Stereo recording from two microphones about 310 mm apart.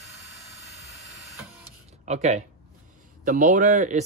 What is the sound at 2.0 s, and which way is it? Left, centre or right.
Speech, right.